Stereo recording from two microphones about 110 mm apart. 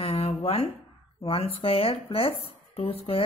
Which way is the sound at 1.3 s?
60° left (ahead or behind).